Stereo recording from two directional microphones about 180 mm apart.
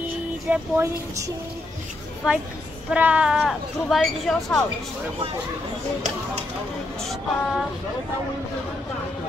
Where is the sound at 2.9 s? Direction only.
5° right (ahead or behind).